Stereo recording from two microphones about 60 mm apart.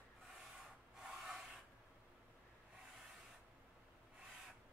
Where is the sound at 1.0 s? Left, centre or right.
Centre.